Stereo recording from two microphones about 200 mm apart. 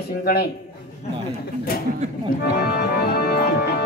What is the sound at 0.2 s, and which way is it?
Speech, 50° left (ahead or behind).